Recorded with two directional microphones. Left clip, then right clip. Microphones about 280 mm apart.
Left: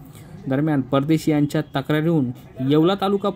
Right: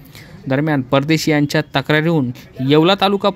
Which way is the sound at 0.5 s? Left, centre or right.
Right.